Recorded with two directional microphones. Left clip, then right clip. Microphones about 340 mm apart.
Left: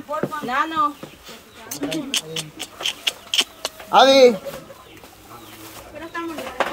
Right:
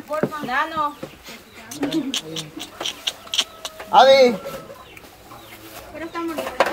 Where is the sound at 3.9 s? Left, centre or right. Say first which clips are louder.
Right 1 dB; left.